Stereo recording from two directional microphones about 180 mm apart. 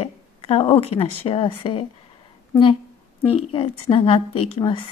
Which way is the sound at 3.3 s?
30° left (ahead or behind).